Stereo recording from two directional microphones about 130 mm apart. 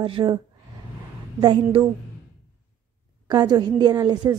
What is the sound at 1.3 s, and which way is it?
Speech, 40° right (ahead or behind).